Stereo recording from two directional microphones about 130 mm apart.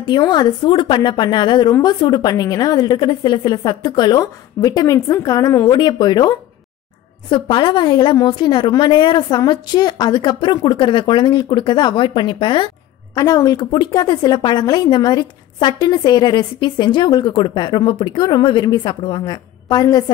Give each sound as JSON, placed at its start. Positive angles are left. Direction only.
{"t": 0.0, "sound": "a woman's voice", "side_deg": 35}